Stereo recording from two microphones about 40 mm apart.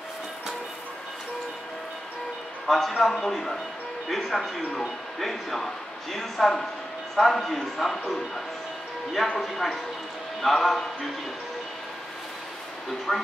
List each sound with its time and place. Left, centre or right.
2.6 s speech: centre
9.3 s speech: centre
13.1 s speech: centre